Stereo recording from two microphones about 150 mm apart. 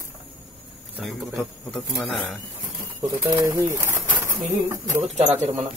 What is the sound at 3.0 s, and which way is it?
Speech, 20° right (ahead or behind).